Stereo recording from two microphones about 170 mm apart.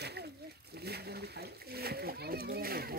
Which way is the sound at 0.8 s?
70° right (ahead or behind).